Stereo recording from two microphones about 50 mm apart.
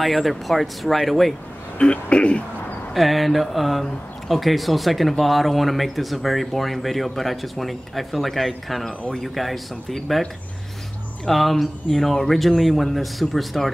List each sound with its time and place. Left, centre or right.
0.0 s speech: centre
1.8 s speech: left
2.9 s speech: centre
11.2 s speech: centre